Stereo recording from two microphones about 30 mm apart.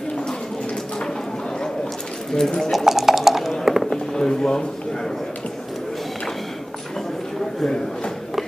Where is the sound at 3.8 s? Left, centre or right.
Centre.